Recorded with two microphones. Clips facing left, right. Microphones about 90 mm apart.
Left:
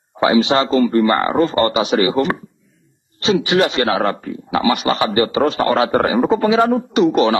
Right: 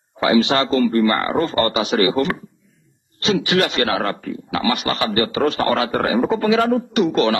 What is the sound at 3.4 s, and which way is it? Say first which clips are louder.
A man's voice: left 3 dB; 25° left (ahead or behind).